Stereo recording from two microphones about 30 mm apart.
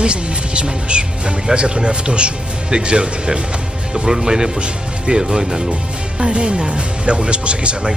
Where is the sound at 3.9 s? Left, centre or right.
Right.